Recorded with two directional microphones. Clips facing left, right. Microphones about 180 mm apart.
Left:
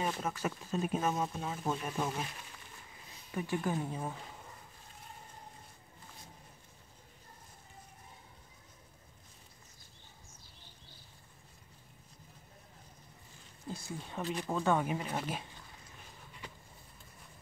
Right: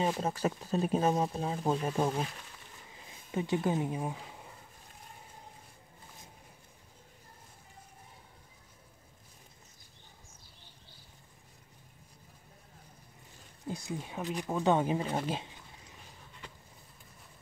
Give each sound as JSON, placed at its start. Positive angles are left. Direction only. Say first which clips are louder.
{"t": 0.0, "sound": "speech", "louder": "right 5 dB", "side_deg": -30}
{"t": 3.3, "sound": "speech", "louder": "right 4 dB", "side_deg": -20}
{"t": 13.7, "sound": "speech", "louder": "right 4 dB", "side_deg": -15}